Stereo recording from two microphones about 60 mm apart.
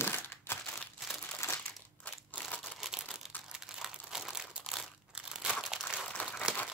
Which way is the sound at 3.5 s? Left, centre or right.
Centre.